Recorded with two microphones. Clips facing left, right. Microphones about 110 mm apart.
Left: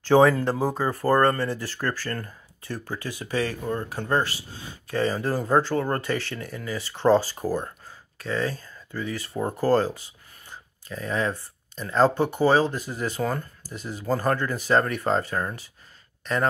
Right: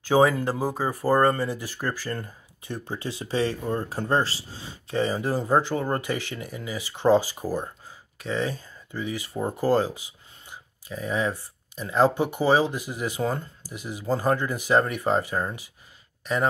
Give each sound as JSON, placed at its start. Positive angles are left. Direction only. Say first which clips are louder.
{"t": 0.0, "sound": "speech", "louder": "left 2 dB", "side_deg": -10}